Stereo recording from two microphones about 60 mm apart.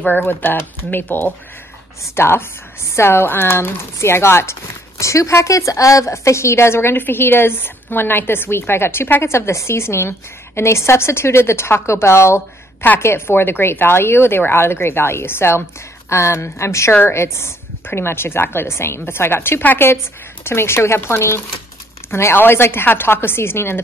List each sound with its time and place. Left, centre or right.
0.0 s speech: left
20.4 s speech: left